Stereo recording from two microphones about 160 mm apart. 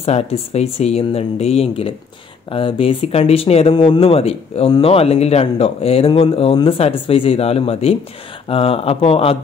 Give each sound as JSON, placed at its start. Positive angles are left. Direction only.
{"t": 0.0, "sound": "speech", "side_deg": 40}